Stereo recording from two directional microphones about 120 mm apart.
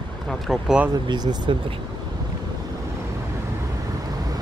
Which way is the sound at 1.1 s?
40° right (ahead or behind).